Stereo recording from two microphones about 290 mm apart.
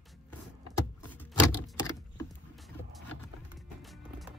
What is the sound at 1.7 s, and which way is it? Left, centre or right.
Typing, centre.